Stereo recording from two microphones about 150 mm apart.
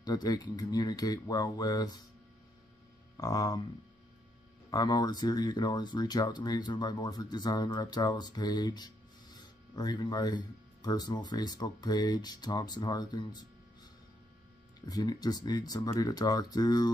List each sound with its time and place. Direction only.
0.0 s speech: 25° left (ahead or behind)
3.2 s speech: 25° left (ahead or behind)
4.6 s speech: 25° left (ahead or behind)
14.9 s speech: 25° left (ahead or behind)